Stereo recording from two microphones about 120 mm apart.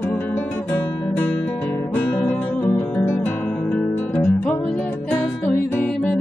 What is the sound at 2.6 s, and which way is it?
Guitar, 20° left (ahead or behind).